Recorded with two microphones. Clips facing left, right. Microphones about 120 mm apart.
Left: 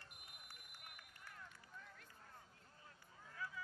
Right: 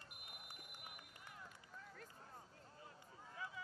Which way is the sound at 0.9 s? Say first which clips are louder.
Right 2 dB; 15° right (ahead or behind).